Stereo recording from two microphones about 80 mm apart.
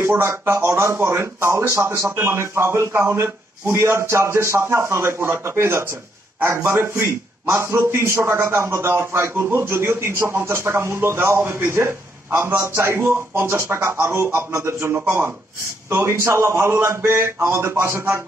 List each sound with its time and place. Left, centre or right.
0.0 s a man's voice: right